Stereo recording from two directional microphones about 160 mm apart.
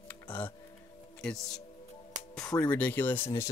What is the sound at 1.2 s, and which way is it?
Speech, centre (ahead or behind).